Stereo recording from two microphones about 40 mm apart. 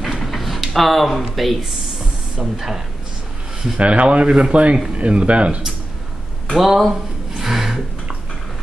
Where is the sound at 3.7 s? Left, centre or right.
Right.